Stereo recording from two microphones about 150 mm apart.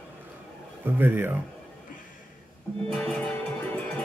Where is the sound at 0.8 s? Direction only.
15° right (ahead or behind).